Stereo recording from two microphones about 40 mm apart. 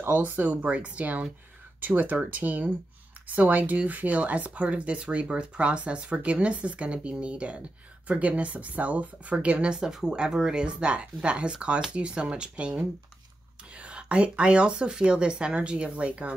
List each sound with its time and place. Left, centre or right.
0.2 s speech: right